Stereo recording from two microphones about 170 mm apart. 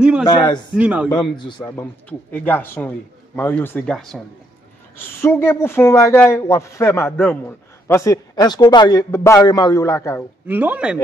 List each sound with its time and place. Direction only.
0.0 s a sound: 5° right (ahead or behind)
0.3 s a man's voice: 25° left (ahead or behind)
0.7 s speech: 5° right (ahead or behind)
1.6 s speech: 10° left (ahead or behind)
4.9 s speech: 15° left (ahead or behind)
10.4 s speech: 10° right (ahead or behind)